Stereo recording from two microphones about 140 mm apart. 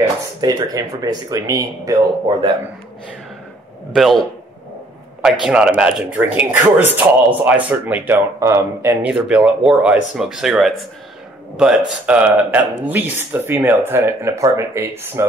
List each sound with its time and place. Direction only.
0.4 s speech: 25° right (ahead or behind)
3.9 s speech: centre (ahead or behind)
5.2 s speech: 5° right (ahead or behind)
9.1 s speech: 5° right (ahead or behind)